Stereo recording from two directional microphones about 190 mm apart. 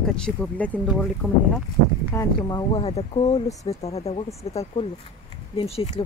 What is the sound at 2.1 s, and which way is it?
Speech, 25° left (ahead or behind).